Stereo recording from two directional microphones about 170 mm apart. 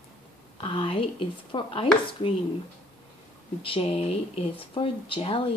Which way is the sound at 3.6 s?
35° left (ahead or behind).